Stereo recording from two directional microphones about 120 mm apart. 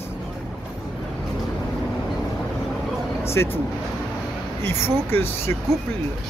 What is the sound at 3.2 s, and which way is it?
Speech, 20° left (ahead or behind).